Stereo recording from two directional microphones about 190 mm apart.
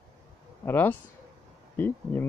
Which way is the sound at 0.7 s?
10° left (ahead or behind).